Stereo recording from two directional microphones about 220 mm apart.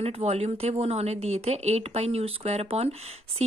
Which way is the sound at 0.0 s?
25° right (ahead or behind).